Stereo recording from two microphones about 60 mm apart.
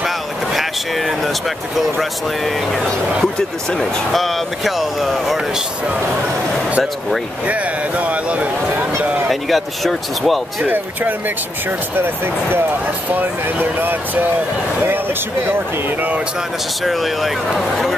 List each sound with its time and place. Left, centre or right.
0.0 s a sound: centre
1.8 s speech: centre
7.4 s speech: right
9.3 s speech: centre
10.6 s speech: right
12.0 s speech: right
16.8 s speech: centre